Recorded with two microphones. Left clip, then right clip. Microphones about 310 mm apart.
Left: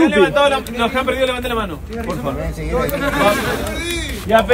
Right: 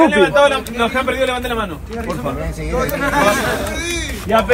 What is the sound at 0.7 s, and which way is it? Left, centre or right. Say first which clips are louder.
Speech: even; centre.